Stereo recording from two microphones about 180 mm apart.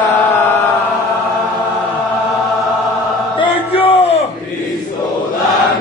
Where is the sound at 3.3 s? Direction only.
30° left (ahead or behind).